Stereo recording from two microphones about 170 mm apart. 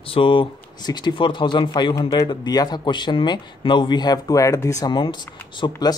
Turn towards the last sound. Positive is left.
turn(degrees=25)  # may be behind; listen again after turning